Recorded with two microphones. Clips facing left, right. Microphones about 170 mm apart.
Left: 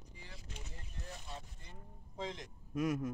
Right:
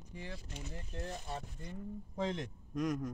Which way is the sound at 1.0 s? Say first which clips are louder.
Right 4 dB; 60° right (ahead or behind).